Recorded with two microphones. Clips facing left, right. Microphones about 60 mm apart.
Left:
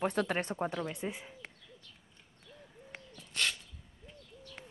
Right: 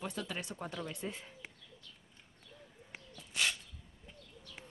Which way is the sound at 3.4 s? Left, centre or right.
Centre.